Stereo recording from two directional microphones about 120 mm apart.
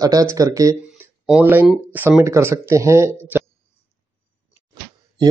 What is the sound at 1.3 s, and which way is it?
Speech, 15° right (ahead or behind).